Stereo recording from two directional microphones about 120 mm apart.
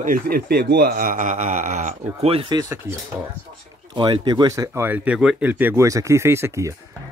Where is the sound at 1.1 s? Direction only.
90° right.